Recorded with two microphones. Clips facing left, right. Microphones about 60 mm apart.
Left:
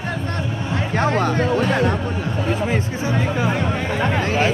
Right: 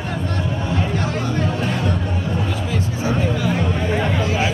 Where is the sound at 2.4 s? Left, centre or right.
Left.